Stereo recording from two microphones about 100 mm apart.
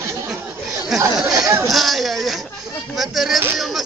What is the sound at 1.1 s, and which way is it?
Speech, 5° right (ahead or behind).